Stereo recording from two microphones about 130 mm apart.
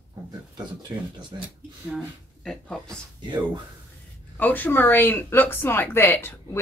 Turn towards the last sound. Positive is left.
turn(degrees=15)  # may be behind; listen again after turning